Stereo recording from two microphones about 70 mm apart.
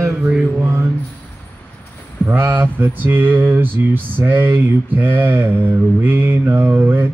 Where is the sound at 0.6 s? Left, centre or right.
Right.